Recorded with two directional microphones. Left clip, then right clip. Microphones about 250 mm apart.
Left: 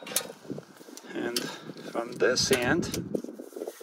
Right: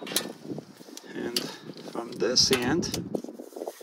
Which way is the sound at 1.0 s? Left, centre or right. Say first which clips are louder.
Even; centre.